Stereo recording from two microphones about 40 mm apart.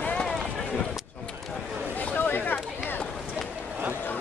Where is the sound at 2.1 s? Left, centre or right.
Left.